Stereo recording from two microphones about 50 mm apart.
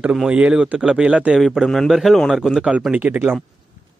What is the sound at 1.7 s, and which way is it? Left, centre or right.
A man's voice, centre.